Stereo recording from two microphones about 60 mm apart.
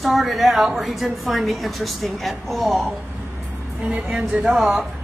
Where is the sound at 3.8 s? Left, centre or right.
Right.